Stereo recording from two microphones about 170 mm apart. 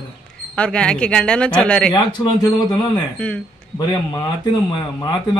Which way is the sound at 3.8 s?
25° left (ahead or behind).